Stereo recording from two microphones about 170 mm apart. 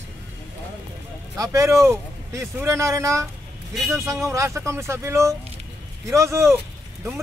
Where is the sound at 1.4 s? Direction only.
20° right (ahead or behind).